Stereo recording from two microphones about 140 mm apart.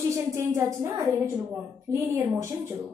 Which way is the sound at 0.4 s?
20° right (ahead or behind).